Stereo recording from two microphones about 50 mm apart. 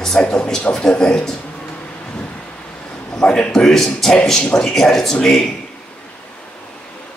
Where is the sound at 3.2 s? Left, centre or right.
Centre.